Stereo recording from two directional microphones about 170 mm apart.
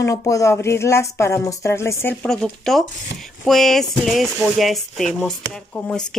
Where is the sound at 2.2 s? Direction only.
5° left (ahead or behind).